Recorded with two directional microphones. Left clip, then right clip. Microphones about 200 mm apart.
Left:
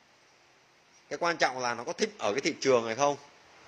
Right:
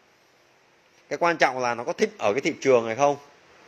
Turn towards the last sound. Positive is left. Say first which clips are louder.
# right 6 dB
turn(degrees=-15)  # may be behind; listen again after turning